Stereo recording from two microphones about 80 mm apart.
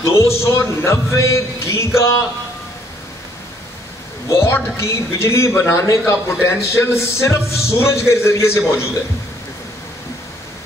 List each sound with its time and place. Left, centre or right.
0.0 s a man's voice: left
4.3 s a man's voice: left